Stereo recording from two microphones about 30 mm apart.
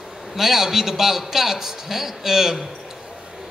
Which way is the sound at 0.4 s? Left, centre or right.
Centre.